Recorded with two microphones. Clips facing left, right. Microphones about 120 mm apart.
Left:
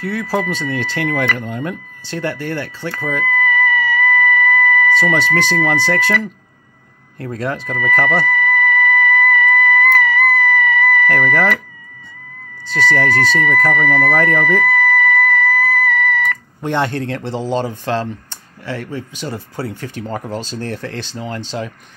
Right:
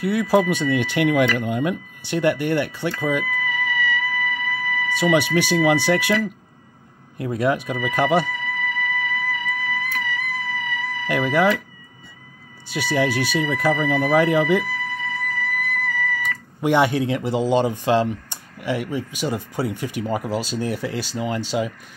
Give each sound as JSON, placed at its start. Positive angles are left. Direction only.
{"t": 0.0, "sound": "speech", "side_deg": -15}
{"t": 3.3, "sound": "vehicle", "side_deg": 50}
{"t": 4.9, "sound": "speech", "side_deg": -15}
{"t": 7.2, "sound": "speech", "side_deg": -15}
{"t": 8.3, "sound": "music", "side_deg": 70}
{"t": 11.1, "sound": "speech", "side_deg": -15}
{"t": 12.6, "sound": "speech", "side_deg": -10}
{"t": 14.6, "sound": "music", "side_deg": 75}
{"t": 16.6, "sound": "speech", "side_deg": -10}